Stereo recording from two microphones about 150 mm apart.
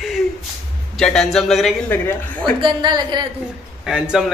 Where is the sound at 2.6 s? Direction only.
30° right (ahead or behind).